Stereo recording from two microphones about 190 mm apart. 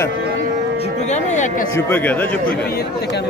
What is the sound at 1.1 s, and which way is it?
Speech, 40° left (ahead or behind).